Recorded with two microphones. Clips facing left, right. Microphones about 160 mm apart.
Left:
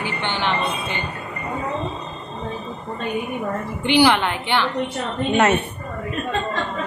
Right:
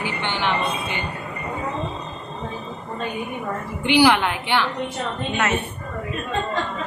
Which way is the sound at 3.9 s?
10° right (ahead or behind).